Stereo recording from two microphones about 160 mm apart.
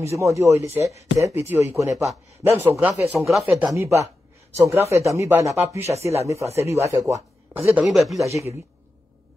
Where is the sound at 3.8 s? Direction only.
20° right (ahead or behind).